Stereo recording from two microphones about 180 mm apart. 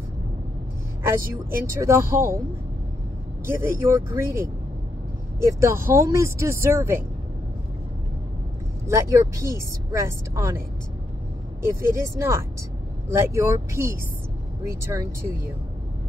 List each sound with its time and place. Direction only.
1.0 s speech: 15° right (ahead or behind)
3.4 s speech: 15° right (ahead or behind)
5.4 s speech: 15° right (ahead or behind)
8.8 s speech: 15° right (ahead or behind)
11.6 s speech: 15° right (ahead or behind)